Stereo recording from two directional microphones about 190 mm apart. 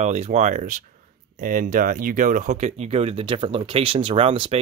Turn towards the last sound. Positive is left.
turn(degrees=-30)  # may be behind; listen again after turning